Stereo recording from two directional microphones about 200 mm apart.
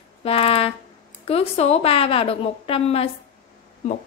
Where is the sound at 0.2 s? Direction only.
30° left (ahead or behind).